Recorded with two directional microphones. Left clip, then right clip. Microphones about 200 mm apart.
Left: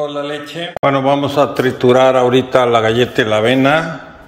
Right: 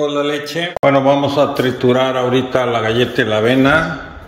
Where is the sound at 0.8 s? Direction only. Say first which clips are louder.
Right 1 dB; 15° left (ahead or behind).